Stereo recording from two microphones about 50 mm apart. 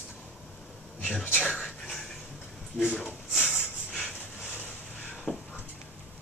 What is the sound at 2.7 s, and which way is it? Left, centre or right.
Speech, left.